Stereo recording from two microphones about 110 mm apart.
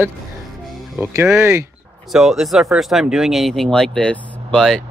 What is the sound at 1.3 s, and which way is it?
Speech, 25° right (ahead or behind).